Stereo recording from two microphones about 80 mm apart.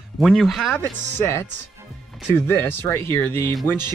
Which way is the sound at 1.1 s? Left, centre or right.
Left.